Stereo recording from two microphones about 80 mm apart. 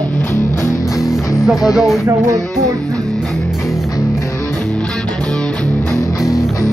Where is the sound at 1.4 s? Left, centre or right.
Centre.